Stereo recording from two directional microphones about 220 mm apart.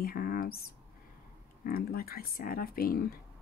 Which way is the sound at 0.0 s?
40° left (ahead or behind).